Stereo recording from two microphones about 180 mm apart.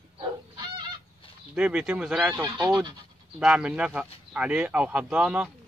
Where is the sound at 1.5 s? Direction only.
5° right (ahead or behind).